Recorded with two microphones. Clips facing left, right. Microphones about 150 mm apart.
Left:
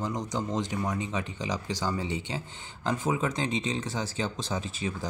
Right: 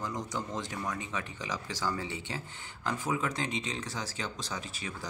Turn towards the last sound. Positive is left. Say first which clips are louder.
# left 7 dB
turn(degrees=25)  # may be behind; listen again after turning